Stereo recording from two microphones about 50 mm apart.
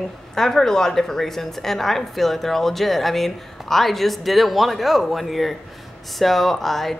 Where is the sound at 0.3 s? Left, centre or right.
Centre.